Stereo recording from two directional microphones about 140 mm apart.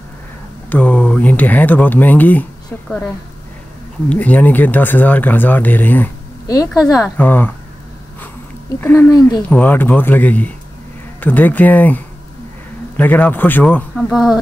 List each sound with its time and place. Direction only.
0.7 s speech: 10° left (ahead or behind)
4.1 s speech: 10° left (ahead or behind)
6.4 s speech: 25° left (ahead or behind)
7.2 s speech: 15° left (ahead or behind)
8.8 s speech: 15° left (ahead or behind)